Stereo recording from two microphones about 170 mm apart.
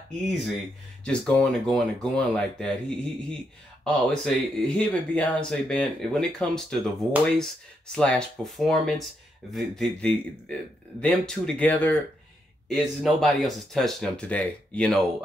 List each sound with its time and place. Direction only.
1.0 s speech: 5° left (ahead or behind)